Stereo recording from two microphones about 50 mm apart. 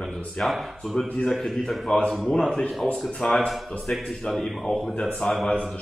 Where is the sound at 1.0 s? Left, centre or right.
Left.